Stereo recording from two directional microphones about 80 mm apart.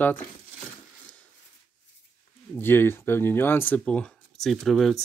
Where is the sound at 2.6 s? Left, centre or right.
Left.